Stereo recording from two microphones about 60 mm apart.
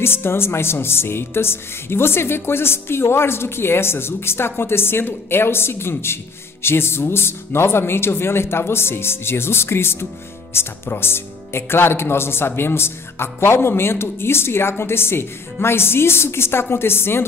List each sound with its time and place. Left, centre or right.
0.0 s a woman's voice: left